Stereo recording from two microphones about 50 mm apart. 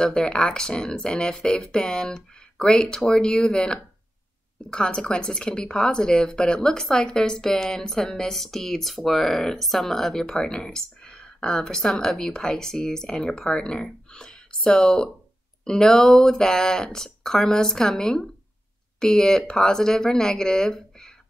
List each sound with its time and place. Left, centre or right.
0.0 s a woman's voice: centre